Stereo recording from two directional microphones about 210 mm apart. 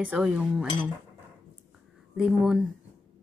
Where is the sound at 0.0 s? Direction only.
5° right (ahead or behind).